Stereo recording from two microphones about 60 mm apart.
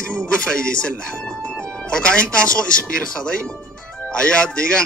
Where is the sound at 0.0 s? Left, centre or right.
Centre.